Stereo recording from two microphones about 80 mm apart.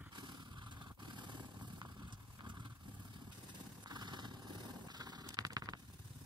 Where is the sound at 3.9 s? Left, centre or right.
Right.